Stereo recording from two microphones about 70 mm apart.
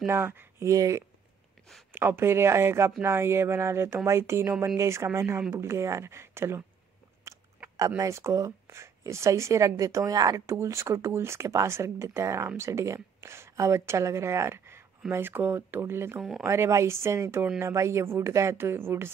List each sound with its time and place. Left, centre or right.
0.1 s speech: right
0.7 s speech: right
1.9 s a woman's voice: right
8.0 s a woman's voice: right
16.2 s speech: centre
16.4 s a woman's voice: right